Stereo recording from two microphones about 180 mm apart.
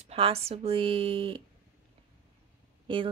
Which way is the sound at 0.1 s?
35° right (ahead or behind).